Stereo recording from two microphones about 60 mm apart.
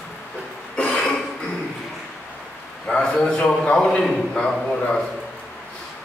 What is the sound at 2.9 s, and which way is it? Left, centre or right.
A man's voice, centre.